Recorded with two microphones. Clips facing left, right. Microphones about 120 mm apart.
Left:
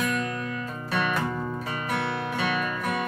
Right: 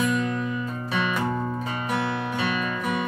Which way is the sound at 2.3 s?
Centre (ahead or behind).